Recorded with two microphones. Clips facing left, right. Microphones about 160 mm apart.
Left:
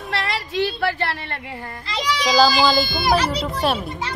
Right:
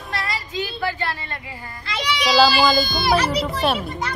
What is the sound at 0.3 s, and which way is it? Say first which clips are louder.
Speech: left 5 dB; 75° left (ahead or behind).